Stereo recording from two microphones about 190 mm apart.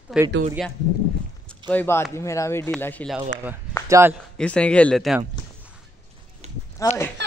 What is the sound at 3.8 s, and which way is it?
Speech, 15° right (ahead or behind).